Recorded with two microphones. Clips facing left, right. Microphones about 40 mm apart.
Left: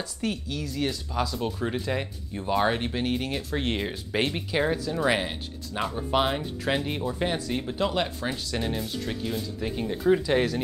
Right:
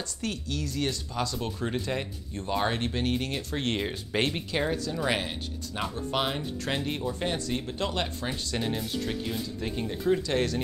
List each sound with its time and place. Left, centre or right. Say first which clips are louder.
0.2 s speech: left 2 dB; centre
6.2 s speech: left 3 dB; centre